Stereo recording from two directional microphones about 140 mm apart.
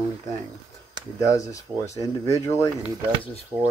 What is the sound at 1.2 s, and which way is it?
Speech, 25° left (ahead or behind).